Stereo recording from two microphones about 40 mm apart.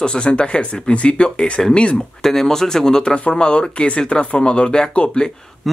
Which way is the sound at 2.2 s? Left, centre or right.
Centre.